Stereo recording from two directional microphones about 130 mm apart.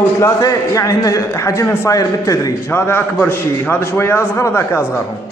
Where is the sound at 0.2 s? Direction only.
25° left (ahead or behind).